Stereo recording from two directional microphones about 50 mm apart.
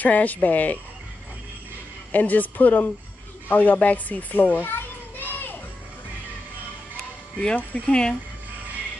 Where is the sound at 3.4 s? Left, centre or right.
Left.